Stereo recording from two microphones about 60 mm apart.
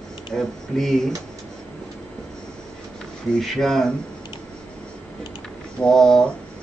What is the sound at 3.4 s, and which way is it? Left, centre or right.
Speech, centre.